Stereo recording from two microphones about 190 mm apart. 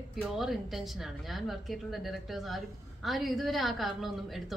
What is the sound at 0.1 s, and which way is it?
A woman's voice, centre (ahead or behind).